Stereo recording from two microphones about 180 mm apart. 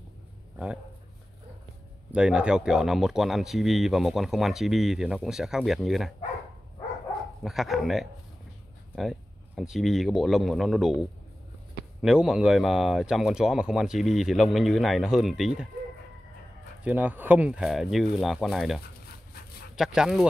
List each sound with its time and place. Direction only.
2.1 s speech: 5° right (ahead or behind)
7.4 s speech: centre (ahead or behind)
9.6 s speech: centre (ahead or behind)
16.8 s speech: 10° right (ahead or behind)
19.0 s dog: 60° left (ahead or behind)
19.7 s speech: 5° right (ahead or behind)